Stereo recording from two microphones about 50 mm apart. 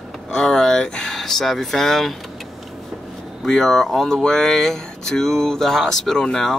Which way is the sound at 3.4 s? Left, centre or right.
Centre.